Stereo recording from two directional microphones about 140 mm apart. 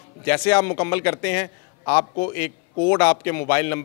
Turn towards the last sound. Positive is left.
turn(degrees=20)  # may be behind; listen again after turning